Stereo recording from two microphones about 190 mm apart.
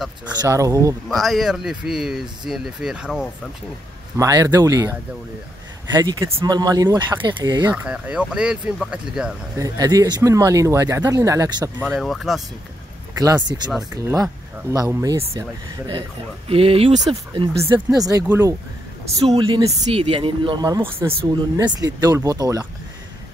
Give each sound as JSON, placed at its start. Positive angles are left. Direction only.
{"t": 0.4, "sound": "speech", "side_deg": -15}
{"t": 1.0, "sound": "speech", "side_deg": 0}
{"t": 4.2, "sound": "speech", "side_deg": -20}
{"t": 7.7, "sound": "speech", "side_deg": -5}
{"t": 9.6, "sound": "speech", "side_deg": -20}
{"t": 11.9, "sound": "speech", "side_deg": 0}
{"t": 13.2, "sound": "speech", "side_deg": -20}
{"t": 16.4, "sound": "speech", "side_deg": -30}
{"t": 19.3, "sound": "speech", "side_deg": -25}